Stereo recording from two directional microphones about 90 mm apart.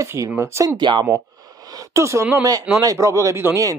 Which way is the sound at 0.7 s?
55° right (ahead or behind).